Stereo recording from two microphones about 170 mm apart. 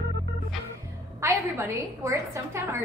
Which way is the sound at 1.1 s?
15° right (ahead or behind).